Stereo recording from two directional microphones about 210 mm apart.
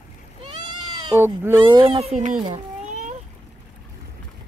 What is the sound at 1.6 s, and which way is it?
Speech, 25° right (ahead or behind).